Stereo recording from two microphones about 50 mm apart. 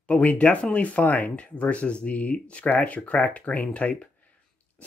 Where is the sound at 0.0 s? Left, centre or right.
Left.